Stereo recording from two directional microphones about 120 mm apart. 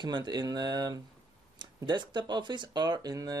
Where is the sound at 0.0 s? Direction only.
40° right (ahead or behind).